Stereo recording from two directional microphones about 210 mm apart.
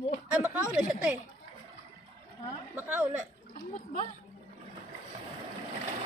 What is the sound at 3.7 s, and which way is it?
Speech, 35° left (ahead or behind).